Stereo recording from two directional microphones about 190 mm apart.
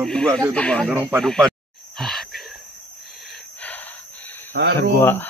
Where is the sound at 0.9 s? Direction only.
10° right (ahead or behind).